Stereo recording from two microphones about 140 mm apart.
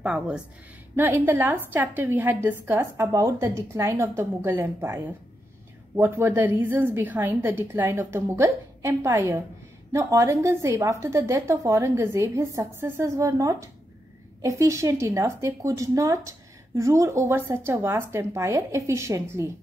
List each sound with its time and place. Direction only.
0.0 s a woman's voice: 10° right (ahead or behind)